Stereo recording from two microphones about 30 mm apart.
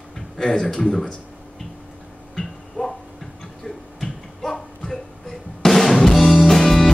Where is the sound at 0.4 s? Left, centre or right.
Centre.